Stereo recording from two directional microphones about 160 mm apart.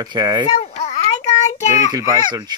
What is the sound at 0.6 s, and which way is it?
Babbling, 45° left (ahead or behind).